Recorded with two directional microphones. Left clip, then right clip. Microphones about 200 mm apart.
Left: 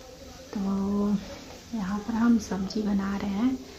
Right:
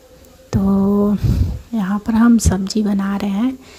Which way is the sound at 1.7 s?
50° right (ahead or behind).